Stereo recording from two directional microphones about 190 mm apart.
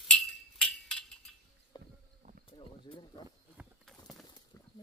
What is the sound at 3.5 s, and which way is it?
Clip-clop, centre (ahead or behind).